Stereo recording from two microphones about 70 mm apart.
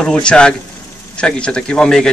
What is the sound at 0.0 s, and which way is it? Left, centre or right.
Speech, centre.